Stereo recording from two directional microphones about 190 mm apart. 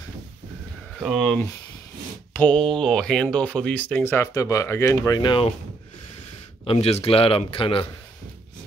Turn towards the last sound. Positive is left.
turn(degrees=30)  # may be behind; listen again after turning